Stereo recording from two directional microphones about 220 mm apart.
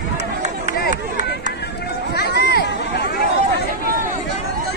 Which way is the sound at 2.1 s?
45° left (ahead or behind).